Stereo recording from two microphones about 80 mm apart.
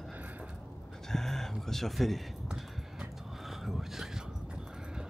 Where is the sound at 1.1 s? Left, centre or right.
Centre.